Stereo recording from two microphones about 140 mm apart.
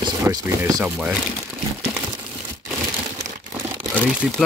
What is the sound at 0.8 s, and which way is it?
Speech, 10° right (ahead or behind).